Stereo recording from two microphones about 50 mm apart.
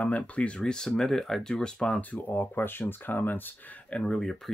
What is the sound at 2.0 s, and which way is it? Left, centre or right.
Speech, left.